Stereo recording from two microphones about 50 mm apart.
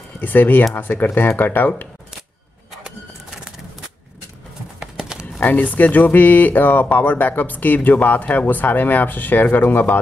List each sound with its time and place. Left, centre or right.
0.2 s speech: left
4.7 s clip-clop: centre
5.4 s speech: left